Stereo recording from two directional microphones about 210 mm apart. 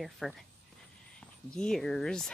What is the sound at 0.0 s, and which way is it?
Speech, centre (ahead or behind).